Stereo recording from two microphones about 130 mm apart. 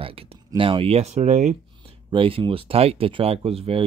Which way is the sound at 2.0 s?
45° right (ahead or behind).